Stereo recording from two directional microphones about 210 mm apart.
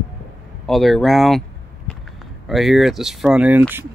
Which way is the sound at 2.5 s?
Centre (ahead or behind).